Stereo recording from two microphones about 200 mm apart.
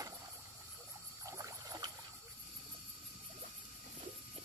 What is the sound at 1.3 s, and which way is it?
Rowboat, 15° right (ahead or behind).